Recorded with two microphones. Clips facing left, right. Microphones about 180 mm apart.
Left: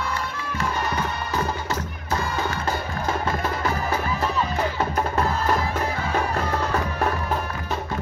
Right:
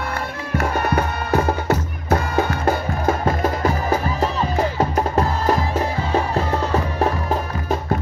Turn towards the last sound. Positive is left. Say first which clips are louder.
# right 4 dB
turn(degrees=-30)  # may be behind; listen again after turning